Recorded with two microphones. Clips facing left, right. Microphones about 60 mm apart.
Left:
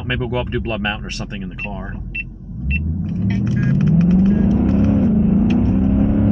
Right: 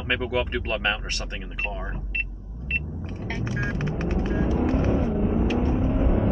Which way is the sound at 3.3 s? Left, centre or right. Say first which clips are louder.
Left 8 dB; right.